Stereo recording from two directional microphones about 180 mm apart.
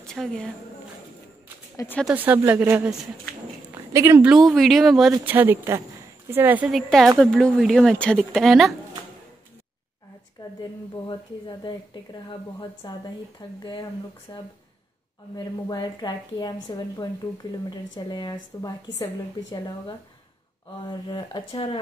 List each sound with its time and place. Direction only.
0.0 s a woman's voice: 5° left (ahead or behind)
2.1 s a woman's voice: 10° right (ahead or behind)
4.3 s a woman's voice: centre (ahead or behind)
5.2 s a woman's voice: 10° right (ahead or behind)
11.1 s speech: 25° left (ahead or behind)
20.8 s speech: 25° left (ahead or behind)